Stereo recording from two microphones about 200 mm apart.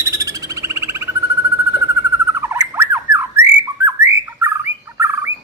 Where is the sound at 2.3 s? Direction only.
10° right (ahead or behind).